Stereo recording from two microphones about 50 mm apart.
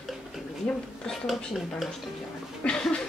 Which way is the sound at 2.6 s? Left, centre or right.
Centre.